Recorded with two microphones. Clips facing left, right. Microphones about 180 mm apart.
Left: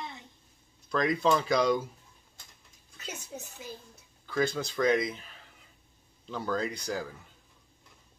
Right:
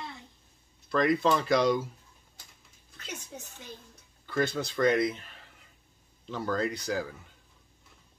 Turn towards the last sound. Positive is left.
turn(degrees=0)  # may be behind; listen again after turning